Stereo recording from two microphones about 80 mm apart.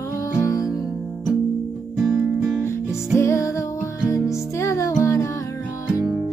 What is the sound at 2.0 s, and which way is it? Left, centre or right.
Music, centre.